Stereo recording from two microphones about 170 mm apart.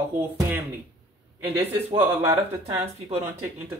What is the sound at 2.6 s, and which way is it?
Speech, 40° right (ahead or behind).